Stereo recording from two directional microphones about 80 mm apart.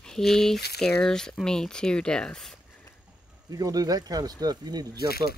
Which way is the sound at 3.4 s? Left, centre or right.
Right.